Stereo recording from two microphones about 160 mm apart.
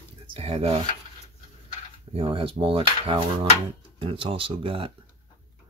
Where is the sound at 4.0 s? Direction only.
30° right (ahead or behind).